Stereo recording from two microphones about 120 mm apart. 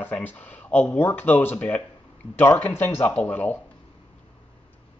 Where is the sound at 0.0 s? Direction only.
15° left (ahead or behind).